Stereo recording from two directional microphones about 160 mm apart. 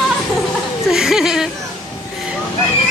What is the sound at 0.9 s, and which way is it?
Speech, 5° right (ahead or behind).